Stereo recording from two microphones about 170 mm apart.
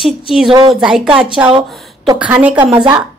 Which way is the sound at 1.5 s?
25° right (ahead or behind).